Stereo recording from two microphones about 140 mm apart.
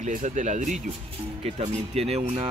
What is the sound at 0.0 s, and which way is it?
Speech, 60° right (ahead or behind).